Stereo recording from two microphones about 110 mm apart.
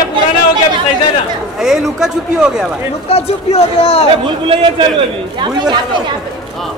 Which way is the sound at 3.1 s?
65° left (ahead or behind).